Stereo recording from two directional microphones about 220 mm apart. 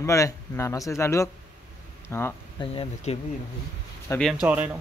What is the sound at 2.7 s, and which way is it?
Speech, 25° left (ahead or behind).